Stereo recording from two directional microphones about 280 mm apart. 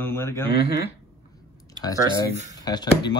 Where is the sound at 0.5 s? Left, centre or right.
Left.